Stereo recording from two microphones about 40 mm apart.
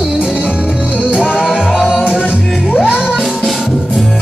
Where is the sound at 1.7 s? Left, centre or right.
Centre.